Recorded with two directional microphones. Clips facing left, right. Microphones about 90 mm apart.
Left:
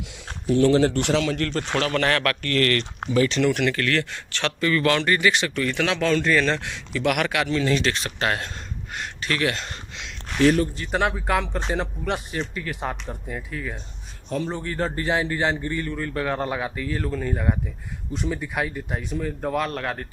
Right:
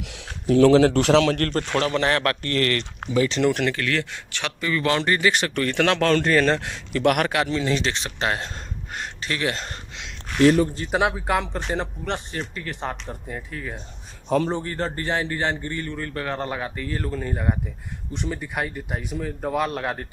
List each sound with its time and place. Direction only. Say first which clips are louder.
0.5 s a man's voice: right 3 dB; 90° right
1.4 s speech: right 2 dB; 40° right (ahead or behind)
1.9 s a man's voice: right 1 dB; 20° right (ahead or behind)
3.7 s speech: left 1 dB; 15° right (ahead or behind)
4.8 s a man's voice: right 1 dB; 25° right (ahead or behind)
5.3 s speech: right 1 dB; 45° right (ahead or behind); by 6.2 s 60° right (ahead or behind)
6.2 s a man's voice: right 2 dB; 40° right (ahead or behind); by 8.5 s 25° right (ahead or behind)
8.9 s a sound: left 2 dB; 30° right (ahead or behind)
10.9 s speech: right 1 dB; 10° right (ahead or behind)
15.0 s speech: left 3 dB; 10° left (ahead or behind)
15.8 s speech: left 2 dB; centre (ahead or behind); by 20.1 s 15° right (ahead or behind)